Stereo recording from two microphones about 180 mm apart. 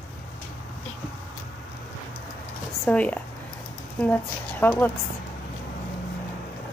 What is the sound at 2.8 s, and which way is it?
Speech, 10° left (ahead or behind).